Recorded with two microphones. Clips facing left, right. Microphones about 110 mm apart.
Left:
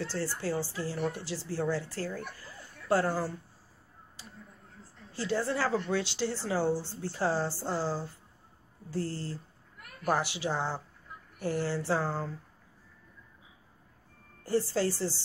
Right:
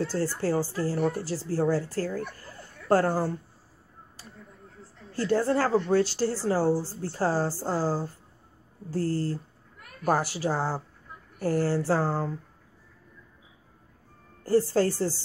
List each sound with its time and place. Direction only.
0.0 s a woman's voice: 45° right (ahead or behind)
5.1 s a woman's voice: 50° right (ahead or behind)
14.4 s a woman's voice: 45° right (ahead or behind)